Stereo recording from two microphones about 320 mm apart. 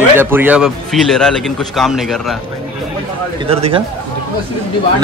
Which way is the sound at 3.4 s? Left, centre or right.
Centre.